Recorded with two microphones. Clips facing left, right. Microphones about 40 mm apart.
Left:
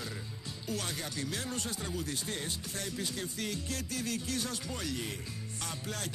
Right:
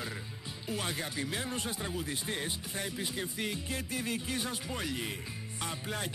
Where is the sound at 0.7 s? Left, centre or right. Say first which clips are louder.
Right 2 dB; right.